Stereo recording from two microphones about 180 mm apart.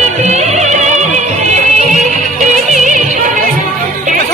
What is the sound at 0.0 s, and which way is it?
Music, 40° right (ahead or behind).